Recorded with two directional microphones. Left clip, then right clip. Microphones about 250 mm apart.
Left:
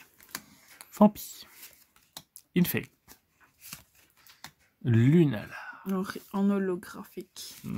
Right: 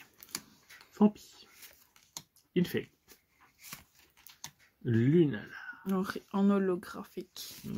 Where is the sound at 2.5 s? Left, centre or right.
Left.